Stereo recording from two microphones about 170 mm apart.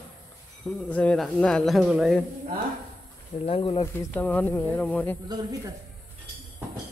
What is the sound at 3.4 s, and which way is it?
Speech, 35° left (ahead or behind).